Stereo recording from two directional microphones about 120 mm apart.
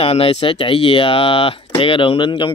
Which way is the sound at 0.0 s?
55° left (ahead or behind).